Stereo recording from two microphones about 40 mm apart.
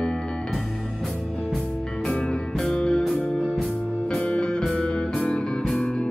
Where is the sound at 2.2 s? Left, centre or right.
Left.